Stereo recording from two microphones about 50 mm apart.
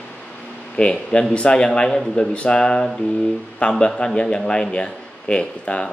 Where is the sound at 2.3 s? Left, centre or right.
Left.